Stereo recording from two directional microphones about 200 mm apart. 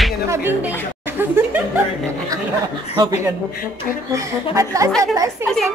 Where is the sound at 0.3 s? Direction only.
10° right (ahead or behind).